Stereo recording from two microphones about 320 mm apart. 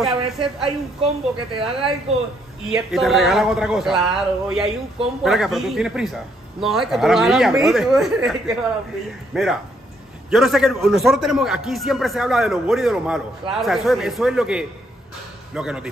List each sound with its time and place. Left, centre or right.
0.4 s a woman's voice: centre
2.7 s a man's voice: centre